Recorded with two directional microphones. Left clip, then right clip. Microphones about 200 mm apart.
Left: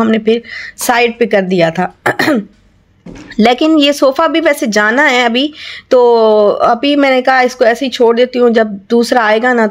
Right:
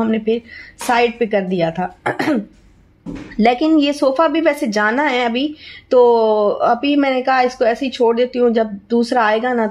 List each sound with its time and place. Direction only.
0.0 s a woman's voice: 25° left (ahead or behind)